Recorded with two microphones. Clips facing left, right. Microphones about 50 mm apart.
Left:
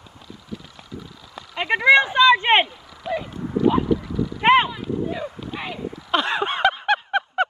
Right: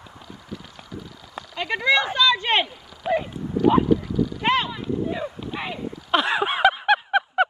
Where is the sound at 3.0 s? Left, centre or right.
Right.